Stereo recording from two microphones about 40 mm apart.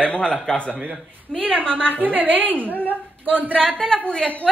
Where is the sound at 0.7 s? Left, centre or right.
Right.